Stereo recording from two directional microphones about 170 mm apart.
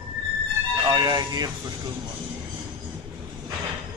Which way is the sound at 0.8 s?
25° right (ahead or behind).